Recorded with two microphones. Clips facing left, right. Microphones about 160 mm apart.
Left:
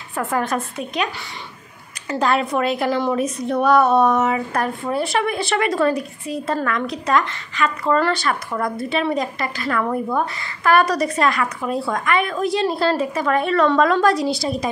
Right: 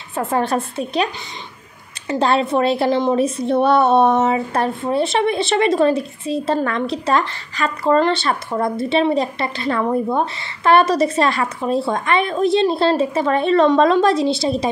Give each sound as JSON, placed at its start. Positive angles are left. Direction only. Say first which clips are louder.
{"t": 0.1, "sound": "speech", "louder": "right 3 dB", "side_deg": -25}